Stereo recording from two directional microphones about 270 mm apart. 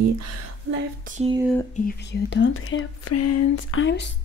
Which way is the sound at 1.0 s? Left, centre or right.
Right.